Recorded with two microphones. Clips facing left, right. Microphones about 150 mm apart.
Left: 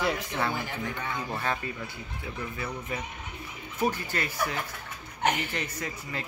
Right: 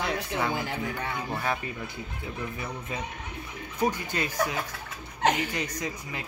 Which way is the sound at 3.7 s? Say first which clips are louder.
Right 1 dB; 15° right (ahead or behind).